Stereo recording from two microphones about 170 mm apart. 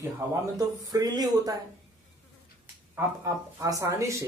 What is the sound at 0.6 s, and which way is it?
Speech, 25° right (ahead or behind).